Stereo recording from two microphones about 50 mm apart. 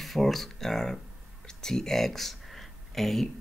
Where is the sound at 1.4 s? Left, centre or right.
Centre.